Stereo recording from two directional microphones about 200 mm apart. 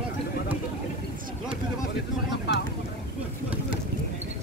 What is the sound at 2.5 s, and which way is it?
Vehicle, 55° left (ahead or behind).